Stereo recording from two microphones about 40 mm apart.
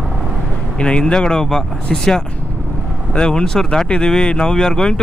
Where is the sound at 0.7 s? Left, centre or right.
Left.